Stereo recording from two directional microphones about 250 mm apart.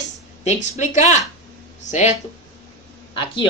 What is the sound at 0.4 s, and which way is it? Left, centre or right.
Speech, left.